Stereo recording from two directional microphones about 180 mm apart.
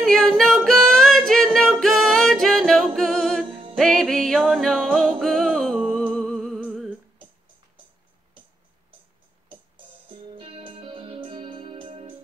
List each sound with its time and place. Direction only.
0.0 s singing: 5° left (ahead or behind)
3.7 s music: centre (ahead or behind)
10.0 s music: 30° right (ahead or behind)